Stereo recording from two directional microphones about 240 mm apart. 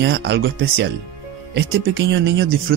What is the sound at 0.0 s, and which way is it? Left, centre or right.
A man's voice, right.